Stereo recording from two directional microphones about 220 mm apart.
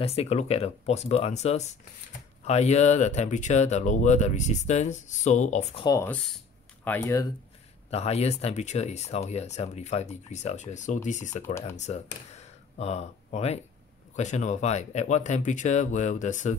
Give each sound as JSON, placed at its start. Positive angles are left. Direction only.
{"t": 0.0, "sound": "speech", "side_deg": 25}
{"t": 5.9, "sound": "speech", "side_deg": 15}
{"t": 6.3, "sound": "a sound", "side_deg": 5}
{"t": 7.9, "sound": "speech", "side_deg": 30}